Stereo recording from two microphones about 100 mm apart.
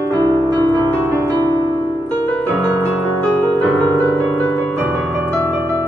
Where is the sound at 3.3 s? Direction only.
10° left (ahead or behind).